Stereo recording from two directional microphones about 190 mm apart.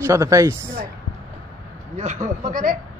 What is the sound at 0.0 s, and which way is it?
Speech, 15° right (ahead or behind).